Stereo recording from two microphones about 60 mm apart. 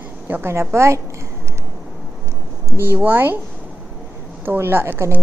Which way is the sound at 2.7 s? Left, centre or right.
Right.